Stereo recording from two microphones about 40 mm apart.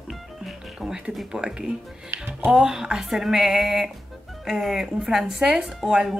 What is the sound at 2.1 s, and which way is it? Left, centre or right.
Speech, right.